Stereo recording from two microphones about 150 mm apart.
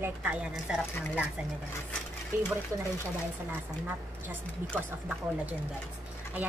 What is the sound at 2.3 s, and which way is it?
Speech, 15° right (ahead or behind).